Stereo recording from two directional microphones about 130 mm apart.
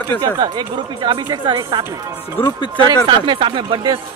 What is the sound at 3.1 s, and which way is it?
Speech, 40° right (ahead or behind).